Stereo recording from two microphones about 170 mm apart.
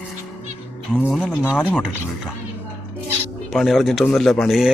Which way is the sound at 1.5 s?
10° left (ahead or behind).